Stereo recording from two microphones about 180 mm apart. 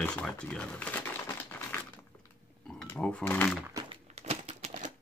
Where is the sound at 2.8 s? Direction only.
5° left (ahead or behind).